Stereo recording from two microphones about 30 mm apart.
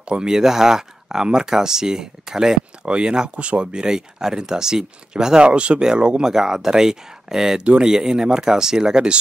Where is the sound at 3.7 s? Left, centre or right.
Right.